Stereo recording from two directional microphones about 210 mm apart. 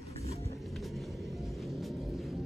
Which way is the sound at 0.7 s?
Centre (ahead or behind).